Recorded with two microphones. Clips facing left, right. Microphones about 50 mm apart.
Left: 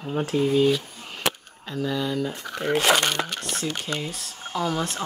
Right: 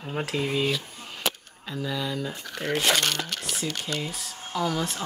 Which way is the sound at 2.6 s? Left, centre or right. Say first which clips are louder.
Left 4 dB; centre.